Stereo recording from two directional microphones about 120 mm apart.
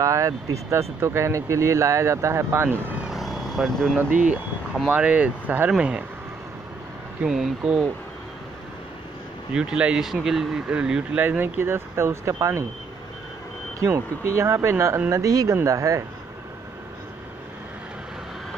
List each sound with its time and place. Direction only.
0.0 s speech: 25° right (ahead or behind)
3.1 s vehicle: centre (ahead or behind)
4.0 s speech: 10° right (ahead or behind)
7.2 s speech: 5° right (ahead or behind)
9.5 s speech: 5° right (ahead or behind); by 12.6 s 25° right (ahead or behind)
13.7 s speech: 25° right (ahead or behind)